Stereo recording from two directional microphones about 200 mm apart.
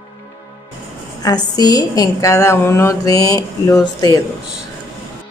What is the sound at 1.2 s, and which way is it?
A woman's voice, 20° left (ahead or behind).